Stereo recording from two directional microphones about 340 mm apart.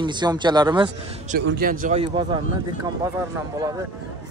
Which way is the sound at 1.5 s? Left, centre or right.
Right.